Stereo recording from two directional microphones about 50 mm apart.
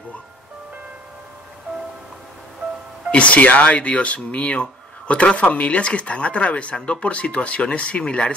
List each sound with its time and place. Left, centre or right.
3.1 s speech: left